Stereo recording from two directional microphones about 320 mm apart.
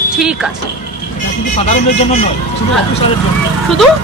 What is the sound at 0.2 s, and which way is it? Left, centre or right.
Speech, centre.